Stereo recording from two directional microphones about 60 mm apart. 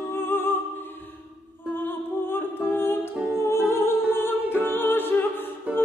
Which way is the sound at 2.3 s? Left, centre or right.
Left.